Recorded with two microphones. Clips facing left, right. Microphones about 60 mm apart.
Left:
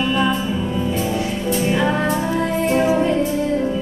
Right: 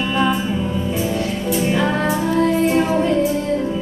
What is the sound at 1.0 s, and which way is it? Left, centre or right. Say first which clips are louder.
Music: even; centre.